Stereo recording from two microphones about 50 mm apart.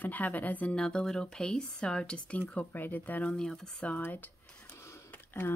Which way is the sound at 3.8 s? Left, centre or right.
Left.